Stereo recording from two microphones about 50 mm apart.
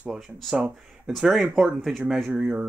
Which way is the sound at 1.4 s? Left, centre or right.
Centre.